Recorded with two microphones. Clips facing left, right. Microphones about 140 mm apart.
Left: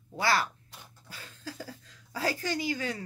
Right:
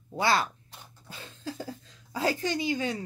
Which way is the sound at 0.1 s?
20° right (ahead or behind).